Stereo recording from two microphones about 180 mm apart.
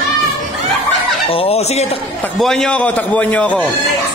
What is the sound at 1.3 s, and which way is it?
Speech, 30° left (ahead or behind).